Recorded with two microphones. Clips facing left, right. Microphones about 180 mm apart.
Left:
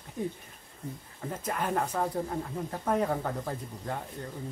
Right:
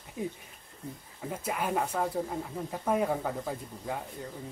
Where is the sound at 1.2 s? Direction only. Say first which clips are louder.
Even; 10° right (ahead or behind).